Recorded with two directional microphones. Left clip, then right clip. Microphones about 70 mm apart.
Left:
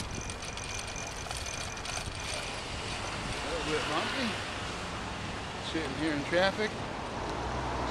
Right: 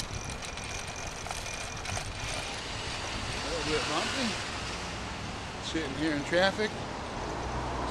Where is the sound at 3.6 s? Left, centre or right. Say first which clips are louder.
Right 1 dB; right.